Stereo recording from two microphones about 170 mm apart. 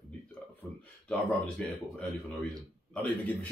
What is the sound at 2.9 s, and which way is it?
Speech, 10° left (ahead or behind).